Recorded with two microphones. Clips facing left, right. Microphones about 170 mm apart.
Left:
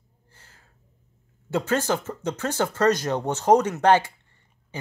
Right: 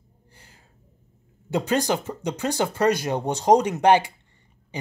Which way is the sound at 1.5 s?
15° right (ahead or behind).